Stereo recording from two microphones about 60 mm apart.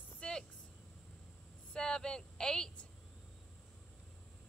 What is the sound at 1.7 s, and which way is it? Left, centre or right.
Speech, centre.